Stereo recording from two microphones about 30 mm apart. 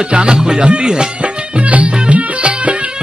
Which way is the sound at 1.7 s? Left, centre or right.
Right.